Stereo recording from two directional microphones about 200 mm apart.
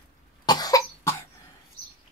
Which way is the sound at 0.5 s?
20° left (ahead or behind).